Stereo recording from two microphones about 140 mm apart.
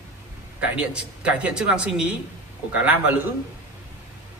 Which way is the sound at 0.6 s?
5° right (ahead or behind).